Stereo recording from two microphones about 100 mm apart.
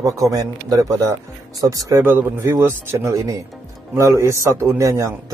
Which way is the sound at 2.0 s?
25° right (ahead or behind).